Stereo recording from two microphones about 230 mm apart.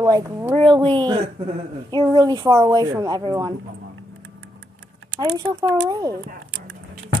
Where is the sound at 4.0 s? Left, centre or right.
Right.